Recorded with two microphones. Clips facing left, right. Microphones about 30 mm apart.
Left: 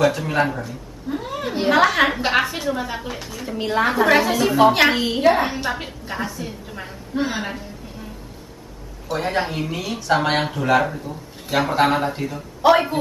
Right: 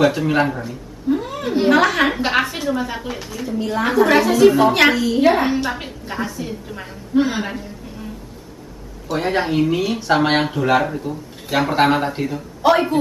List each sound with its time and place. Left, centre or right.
0.0 s a woman's voice: centre
4.9 s a woman's voice: left
5.2 s a woman's voice: centre
9.1 s a man's voice: centre
12.4 s a woman's voice: centre